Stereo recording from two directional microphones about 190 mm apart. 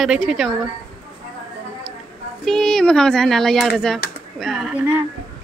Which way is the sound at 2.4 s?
Centre (ahead or behind).